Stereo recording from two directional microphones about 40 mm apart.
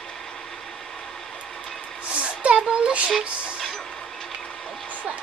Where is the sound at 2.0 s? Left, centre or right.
Right.